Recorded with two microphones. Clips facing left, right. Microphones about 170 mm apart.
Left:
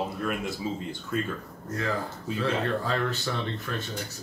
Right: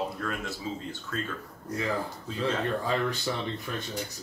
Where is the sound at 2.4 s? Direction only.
15° right (ahead or behind).